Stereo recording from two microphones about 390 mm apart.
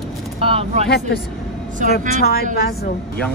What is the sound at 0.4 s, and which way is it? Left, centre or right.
Speech, centre.